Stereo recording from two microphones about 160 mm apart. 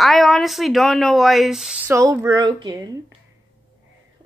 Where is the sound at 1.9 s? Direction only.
20° right (ahead or behind).